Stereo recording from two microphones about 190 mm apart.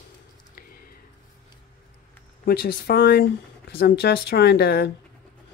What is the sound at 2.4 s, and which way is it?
Speech, 55° left (ahead or behind).